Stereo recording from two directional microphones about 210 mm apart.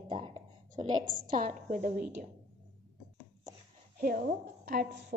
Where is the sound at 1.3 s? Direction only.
40° right (ahead or behind).